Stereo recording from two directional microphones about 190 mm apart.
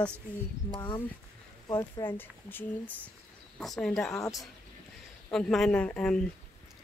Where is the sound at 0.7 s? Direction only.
20° left (ahead or behind); by 4.2 s centre (ahead or behind).